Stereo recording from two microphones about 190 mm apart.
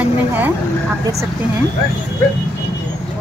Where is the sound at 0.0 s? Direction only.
10° right (ahead or behind).